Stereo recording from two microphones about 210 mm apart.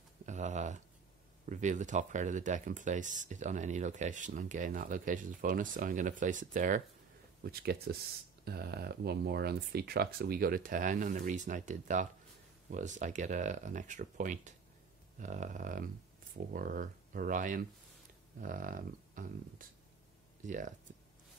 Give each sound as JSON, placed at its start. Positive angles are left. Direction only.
{"t": 0.2, "sound": "a sound", "side_deg": -35}
{"t": 1.4, "sound": "speech", "side_deg": -35}
{"t": 7.4, "sound": "speech", "side_deg": -50}